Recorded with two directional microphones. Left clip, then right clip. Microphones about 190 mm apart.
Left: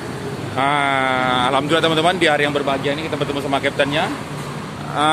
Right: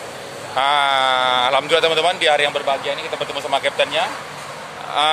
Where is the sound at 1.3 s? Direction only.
20° right (ahead or behind).